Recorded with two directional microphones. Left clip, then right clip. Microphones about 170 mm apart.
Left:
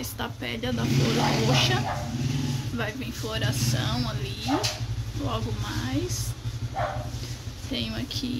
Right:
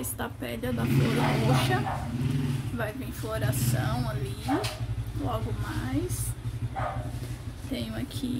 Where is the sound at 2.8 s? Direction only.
20° left (ahead or behind).